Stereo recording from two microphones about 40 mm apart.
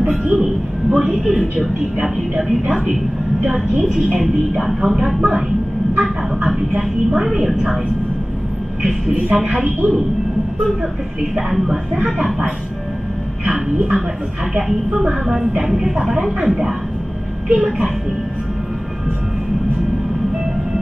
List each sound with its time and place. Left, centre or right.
0.0 s a man's voice: right
0.3 s a woman's voice: centre
2.0 s speech: centre
4.2 s speech: centre
5.9 s a sound: right
6.8 s speech: centre
8.8 s a woman's voice: right
11.3 s speech: centre
13.5 s speech: centre
15.0 s a woman's voice: centre